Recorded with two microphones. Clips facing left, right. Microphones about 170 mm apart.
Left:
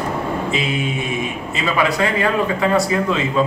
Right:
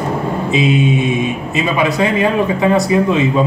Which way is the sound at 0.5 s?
20° right (ahead or behind).